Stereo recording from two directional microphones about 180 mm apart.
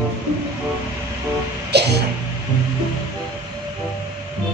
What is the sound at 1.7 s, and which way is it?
Music, 65° right (ahead or behind).